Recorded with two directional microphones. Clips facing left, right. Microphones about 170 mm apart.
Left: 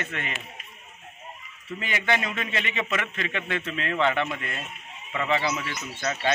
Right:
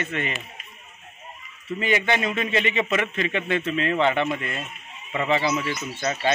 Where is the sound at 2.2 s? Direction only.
10° right (ahead or behind).